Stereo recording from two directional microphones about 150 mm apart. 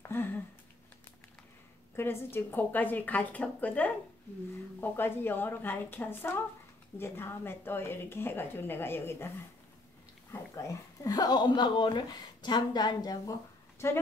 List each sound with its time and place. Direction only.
0.1 s a sound: 15° left (ahead or behind)
2.0 s speech: 15° left (ahead or behind)
10.3 s speech: 20° left (ahead or behind)